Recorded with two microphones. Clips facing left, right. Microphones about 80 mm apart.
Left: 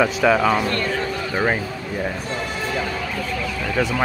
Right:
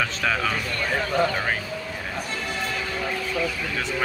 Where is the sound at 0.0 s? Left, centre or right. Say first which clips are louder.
Left 8 dB; centre.